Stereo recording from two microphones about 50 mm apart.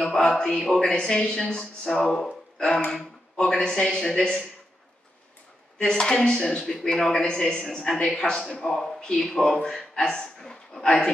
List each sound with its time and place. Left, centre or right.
0.2 s a man's voice: centre
5.8 s a man's voice: centre